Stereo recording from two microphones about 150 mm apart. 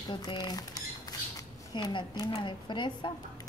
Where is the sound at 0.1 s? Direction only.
30° left (ahead or behind).